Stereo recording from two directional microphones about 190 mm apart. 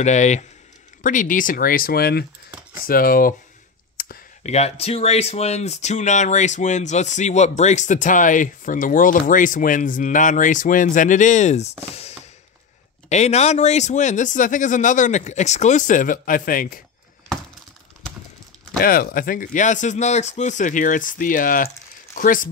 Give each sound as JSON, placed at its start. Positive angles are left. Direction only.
{"t": 0.0, "sound": "speech", "side_deg": 40}
{"t": 4.0, "sound": "a sound", "side_deg": 50}
{"t": 4.4, "sound": "speech", "side_deg": 35}
{"t": 13.1, "sound": "speech", "side_deg": 35}
{"t": 18.8, "sound": "speech", "side_deg": 50}